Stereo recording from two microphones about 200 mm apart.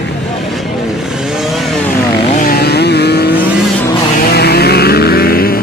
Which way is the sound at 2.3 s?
50° left (ahead or behind).